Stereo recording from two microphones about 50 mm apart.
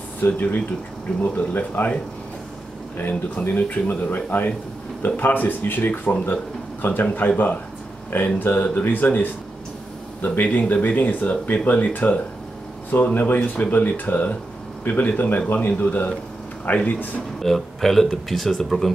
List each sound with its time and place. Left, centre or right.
0.2 s speech: left
3.0 s speech: left
17.4 s speech: centre